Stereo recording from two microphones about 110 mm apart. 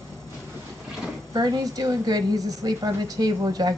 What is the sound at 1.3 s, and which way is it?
A woman's voice, 35° right (ahead or behind).